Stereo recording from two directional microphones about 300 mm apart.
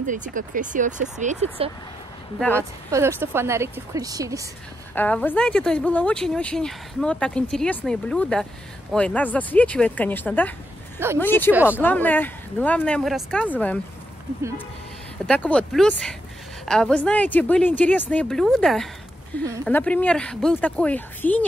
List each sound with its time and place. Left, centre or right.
0.0 s speech: right
2.5 s a woman's voice: centre
4.9 s a woman's voice: centre
11.5 s a woman's voice: centre
11.8 s a woman's voice: centre
15.2 s a woman's voice: centre